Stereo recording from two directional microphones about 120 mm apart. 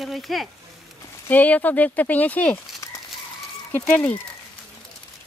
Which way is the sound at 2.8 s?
25° left (ahead or behind).